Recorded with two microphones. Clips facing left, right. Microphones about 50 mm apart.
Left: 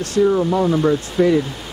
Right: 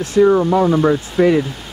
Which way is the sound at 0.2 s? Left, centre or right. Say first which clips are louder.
Right 4 dB; right.